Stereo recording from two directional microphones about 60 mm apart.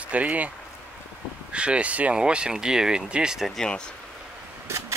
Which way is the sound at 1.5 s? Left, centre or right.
Centre.